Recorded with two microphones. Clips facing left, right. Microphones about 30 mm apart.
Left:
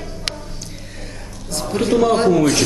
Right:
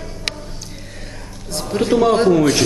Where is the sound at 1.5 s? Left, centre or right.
Centre.